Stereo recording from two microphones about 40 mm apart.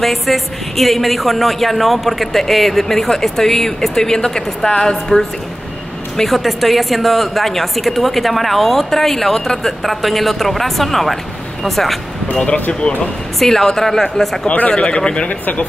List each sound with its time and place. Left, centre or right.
0.0 s a woman's voice: centre
6.1 s a woman's voice: centre
12.3 s speech: left
13.4 s speech: centre
14.8 s speech: left
15.2 s speech: left